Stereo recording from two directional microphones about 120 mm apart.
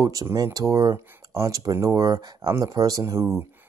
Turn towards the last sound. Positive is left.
turn(degrees=-25)  # may be behind; listen again after turning